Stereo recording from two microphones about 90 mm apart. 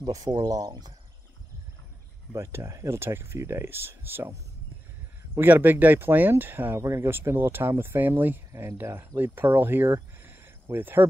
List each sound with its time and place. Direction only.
0.0 s speech: 45° right (ahead or behind)
2.3 s speech: 30° right (ahead or behind)
10.2 s a sound: 25° right (ahead or behind)